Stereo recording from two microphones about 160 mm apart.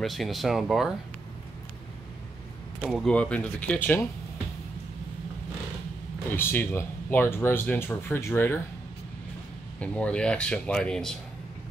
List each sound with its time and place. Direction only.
0.0 s speech: centre (ahead or behind)
2.8 s speech: centre (ahead or behind)
6.3 s speech: 15° left (ahead or behind)
9.8 s speech: 5° left (ahead or behind)